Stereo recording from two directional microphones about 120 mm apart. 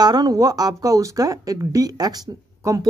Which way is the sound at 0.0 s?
35° right (ahead or behind).